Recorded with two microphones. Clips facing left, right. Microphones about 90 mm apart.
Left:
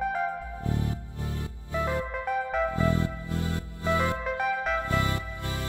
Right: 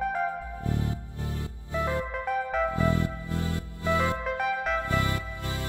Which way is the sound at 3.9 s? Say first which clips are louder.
Even; 20° right (ahead or behind).